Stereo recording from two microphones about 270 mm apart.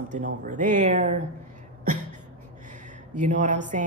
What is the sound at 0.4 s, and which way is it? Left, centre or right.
Speech, right.